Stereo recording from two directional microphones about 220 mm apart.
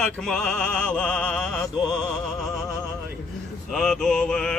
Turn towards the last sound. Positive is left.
turn(degrees=5)  # may be behind; listen again after turning